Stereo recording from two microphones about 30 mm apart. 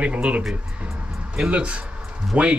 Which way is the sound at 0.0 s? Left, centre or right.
Right.